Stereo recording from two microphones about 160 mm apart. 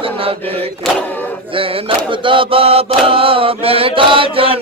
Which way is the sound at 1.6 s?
35° right (ahead or behind).